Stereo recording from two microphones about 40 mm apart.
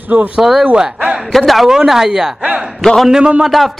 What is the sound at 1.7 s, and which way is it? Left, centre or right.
Speech, centre.